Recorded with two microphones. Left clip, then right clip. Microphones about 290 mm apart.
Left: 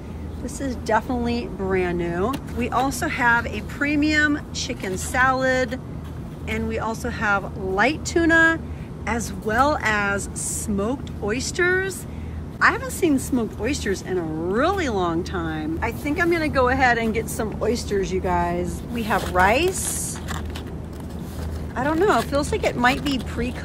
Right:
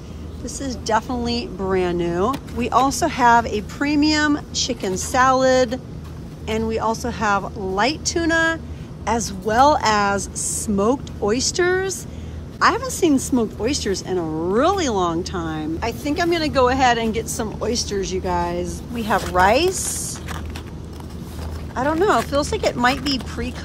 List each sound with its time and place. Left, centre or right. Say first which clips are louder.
0.6 s a woman's voice: right 1 dB; centre
21.7 s a woman's voice: right 2 dB; centre